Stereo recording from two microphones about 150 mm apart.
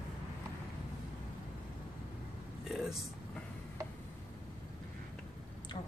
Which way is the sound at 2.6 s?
Centre (ahead or behind).